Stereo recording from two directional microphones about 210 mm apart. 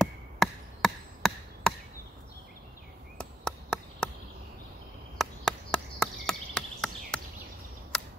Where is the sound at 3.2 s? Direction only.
5° left (ahead or behind).